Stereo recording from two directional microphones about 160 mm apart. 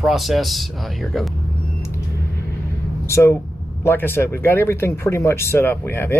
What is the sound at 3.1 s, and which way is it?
Speech, 15° left (ahead or behind).